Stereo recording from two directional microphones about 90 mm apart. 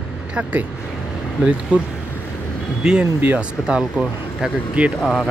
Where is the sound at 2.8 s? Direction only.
10° right (ahead or behind).